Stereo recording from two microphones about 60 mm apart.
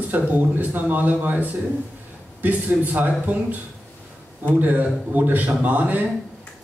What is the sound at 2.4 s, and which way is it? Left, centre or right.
A man's voice, right.